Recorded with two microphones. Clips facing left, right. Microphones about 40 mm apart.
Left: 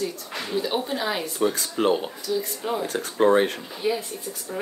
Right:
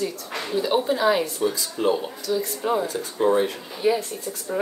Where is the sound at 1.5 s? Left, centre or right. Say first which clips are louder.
Left 1 dB; left.